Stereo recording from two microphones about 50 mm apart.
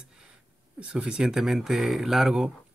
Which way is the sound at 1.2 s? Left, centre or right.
Centre.